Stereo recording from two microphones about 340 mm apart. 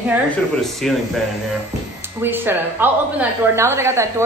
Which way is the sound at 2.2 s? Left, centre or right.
Centre.